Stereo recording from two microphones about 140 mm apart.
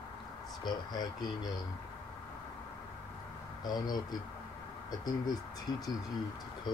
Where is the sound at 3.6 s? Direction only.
30° left (ahead or behind).